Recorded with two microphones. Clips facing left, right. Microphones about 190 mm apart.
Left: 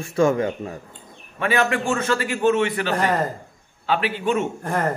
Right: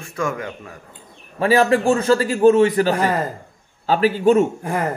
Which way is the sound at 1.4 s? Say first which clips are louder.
Right 6 dB; 35° right (ahead or behind).